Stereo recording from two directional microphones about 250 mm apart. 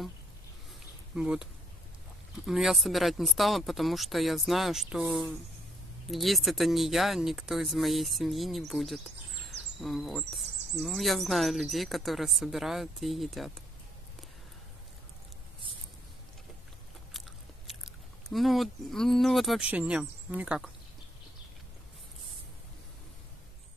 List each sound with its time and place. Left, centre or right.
1.1 s insect: centre
18.3 s insect: centre